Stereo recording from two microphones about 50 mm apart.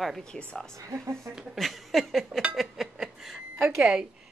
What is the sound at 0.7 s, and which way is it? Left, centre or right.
Speech, right.